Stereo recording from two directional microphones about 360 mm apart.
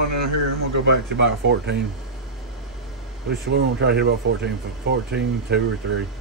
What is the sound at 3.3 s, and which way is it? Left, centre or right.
Speech, right.